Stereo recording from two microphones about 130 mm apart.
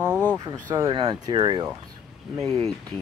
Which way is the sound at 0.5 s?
30° right (ahead or behind).